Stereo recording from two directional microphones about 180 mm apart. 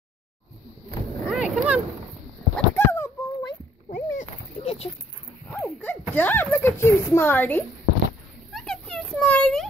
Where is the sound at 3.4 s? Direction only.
35° left (ahead or behind).